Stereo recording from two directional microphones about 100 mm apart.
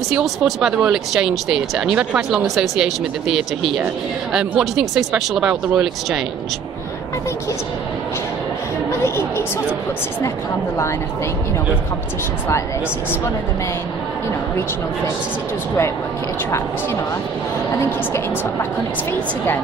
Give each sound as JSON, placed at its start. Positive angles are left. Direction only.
{"t": 0.1, "sound": "speech", "side_deg": -5}